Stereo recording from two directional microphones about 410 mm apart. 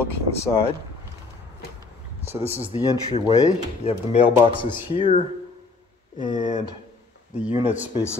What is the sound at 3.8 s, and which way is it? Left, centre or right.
Speech, centre.